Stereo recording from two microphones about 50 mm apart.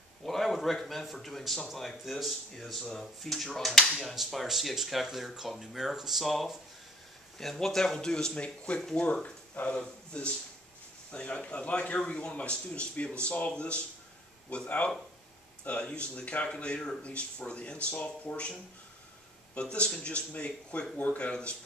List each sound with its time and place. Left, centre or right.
0.2 s a man's voice: centre; by 18.5 s left
19.5 s speech: left